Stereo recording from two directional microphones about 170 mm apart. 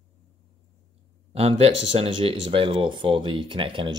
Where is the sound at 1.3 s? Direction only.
35° right (ahead or behind).